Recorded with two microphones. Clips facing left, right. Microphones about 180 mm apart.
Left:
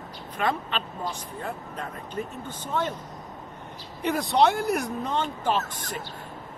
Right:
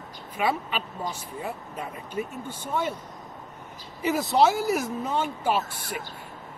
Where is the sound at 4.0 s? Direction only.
5° right (ahead or behind).